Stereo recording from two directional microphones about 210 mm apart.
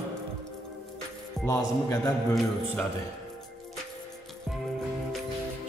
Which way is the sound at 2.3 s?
Centre (ahead or behind).